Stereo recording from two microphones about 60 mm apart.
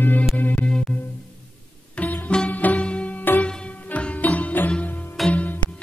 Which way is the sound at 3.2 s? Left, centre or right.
Left.